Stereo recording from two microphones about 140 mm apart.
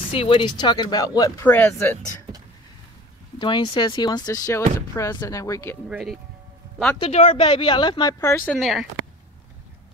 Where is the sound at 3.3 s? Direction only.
35° left (ahead or behind).